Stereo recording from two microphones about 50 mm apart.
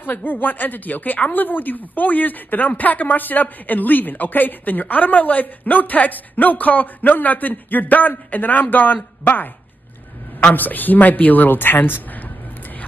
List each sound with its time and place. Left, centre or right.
0.0 s speech: left
10.5 s speech: left